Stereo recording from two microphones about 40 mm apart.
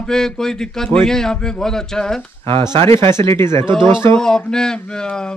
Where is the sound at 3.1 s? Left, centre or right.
Left.